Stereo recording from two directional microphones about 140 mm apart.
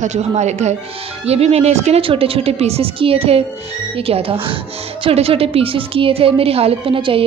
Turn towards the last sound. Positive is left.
turn(degrees=-40)  # may be behind; listen again after turning